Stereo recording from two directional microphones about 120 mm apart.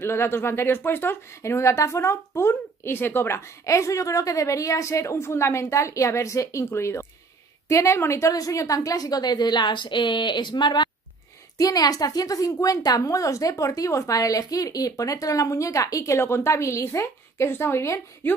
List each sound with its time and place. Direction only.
0.0 s a woman's voice: 20° left (ahead or behind)